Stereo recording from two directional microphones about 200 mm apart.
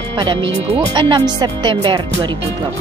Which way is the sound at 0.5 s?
20° right (ahead or behind).